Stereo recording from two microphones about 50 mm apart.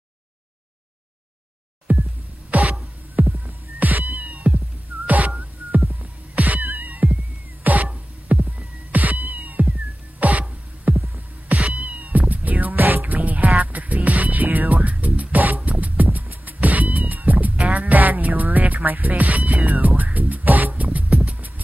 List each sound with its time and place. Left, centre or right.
1.9 s music: right
3.2 s cat: right
5.0 s music: right
6.3 s cat: right
6.8 s music: right
8.3 s hum: right
8.9 s cat: right
10.9 s hum: right
11.5 s cat: right
13.7 s music: right
14.8 s music: right
15.7 s cat: right
17.7 s music: right